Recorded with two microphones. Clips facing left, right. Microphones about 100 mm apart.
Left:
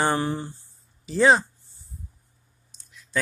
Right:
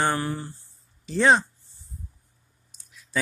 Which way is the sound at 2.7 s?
Centre (ahead or behind).